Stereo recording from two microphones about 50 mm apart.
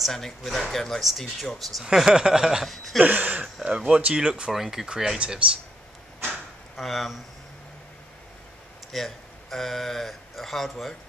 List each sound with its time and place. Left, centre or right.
0.0 s speech: centre
2.0 s speech: centre
2.6 s speech: centre
3.0 s a sound: right
3.6 s speech: right
6.8 s speech: centre
8.9 s speech: centre